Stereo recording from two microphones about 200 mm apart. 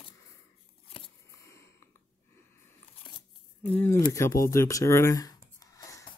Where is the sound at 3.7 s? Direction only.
10° left (ahead or behind).